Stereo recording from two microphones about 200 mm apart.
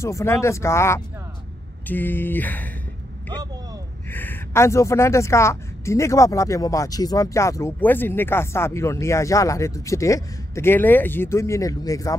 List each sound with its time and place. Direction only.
0.0 s a woman's voice: 15° left (ahead or behind)
4.1 s a woman's voice: 10° left (ahead or behind)